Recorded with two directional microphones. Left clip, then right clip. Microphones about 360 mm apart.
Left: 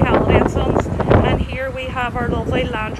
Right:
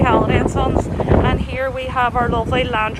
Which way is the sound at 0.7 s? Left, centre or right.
Centre.